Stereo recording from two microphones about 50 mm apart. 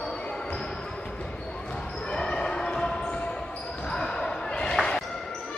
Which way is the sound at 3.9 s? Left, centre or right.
Centre.